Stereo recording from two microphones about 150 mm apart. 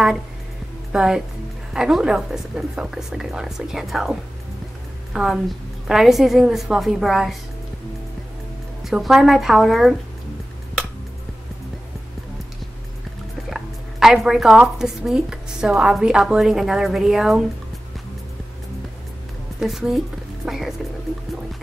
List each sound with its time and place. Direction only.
0.9 s a woman's voice: 5° right (ahead or behind)
8.8 s speech: centre (ahead or behind)
13.5 s speech: centre (ahead or behind)
19.6 s speech: centre (ahead or behind)